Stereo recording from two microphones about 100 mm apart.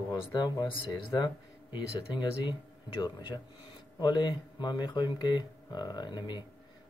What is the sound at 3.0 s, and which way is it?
Speech, 50° left (ahead or behind).